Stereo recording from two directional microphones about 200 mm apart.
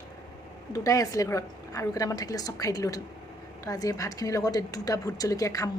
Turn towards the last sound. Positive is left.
turn(degrees=15)  # may be behind; listen again after turning